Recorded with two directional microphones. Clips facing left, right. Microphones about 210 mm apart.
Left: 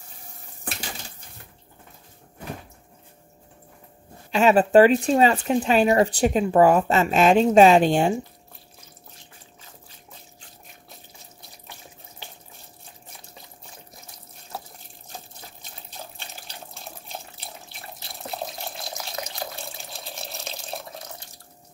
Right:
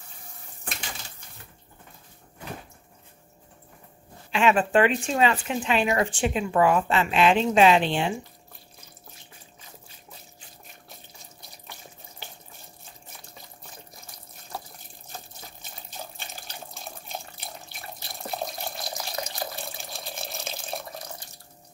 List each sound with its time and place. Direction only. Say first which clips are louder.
4.3 s speech: left 5 dB; 40° left (ahead or behind)
14.5 s water: left 1 dB; 5° left (ahead or behind)
16.2 s water: even; centre (ahead or behind)
18.3 s water: right 1 dB; centre (ahead or behind)